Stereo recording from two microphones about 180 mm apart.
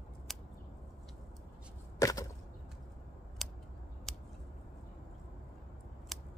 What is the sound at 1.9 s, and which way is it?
Chop, 20° left (ahead or behind).